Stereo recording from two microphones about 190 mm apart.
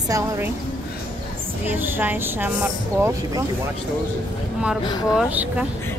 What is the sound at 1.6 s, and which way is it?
Speech, 10° right (ahead or behind).